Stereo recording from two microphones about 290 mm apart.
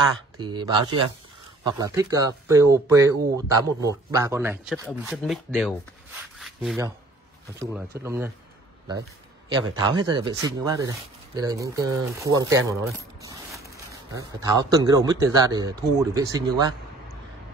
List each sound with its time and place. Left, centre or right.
0.4 s speech: centre
6.3 s rub: centre
7.5 s speech: centre
9.8 s speech: centre
13.2 s a sound: centre
14.1 s speech: centre